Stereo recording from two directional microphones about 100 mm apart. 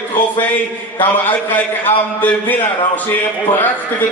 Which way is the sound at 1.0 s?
15° left (ahead or behind).